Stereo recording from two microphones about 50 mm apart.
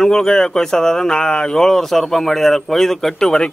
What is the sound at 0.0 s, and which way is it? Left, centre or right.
Speech, centre.